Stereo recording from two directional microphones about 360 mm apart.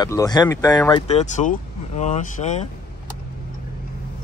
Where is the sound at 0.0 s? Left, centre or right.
Centre.